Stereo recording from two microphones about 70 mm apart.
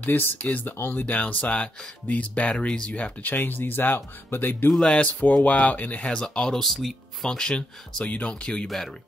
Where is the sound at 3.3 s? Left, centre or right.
Left.